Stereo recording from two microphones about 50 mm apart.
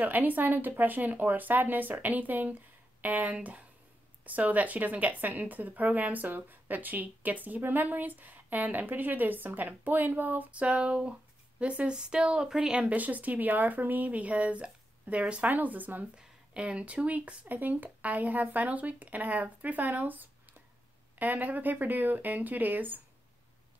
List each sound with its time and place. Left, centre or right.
0.0 s speech: right; by 12.8 s centre
12.8 s speech: right
16.2 s speech: right